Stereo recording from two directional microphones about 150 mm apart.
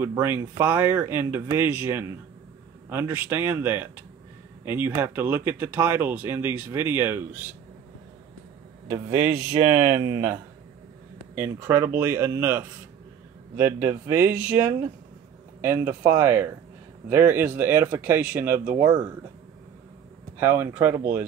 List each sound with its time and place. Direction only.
0.0 s speech: 15° right (ahead or behind)
8.8 s speech: 15° right (ahead or behind)
20.3 s speech: 15° right (ahead or behind)